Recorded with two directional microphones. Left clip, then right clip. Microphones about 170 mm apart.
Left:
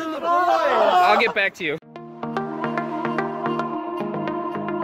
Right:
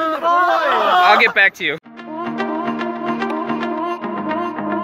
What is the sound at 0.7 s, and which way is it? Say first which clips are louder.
Speech: right 2 dB; 20° right (ahead or behind).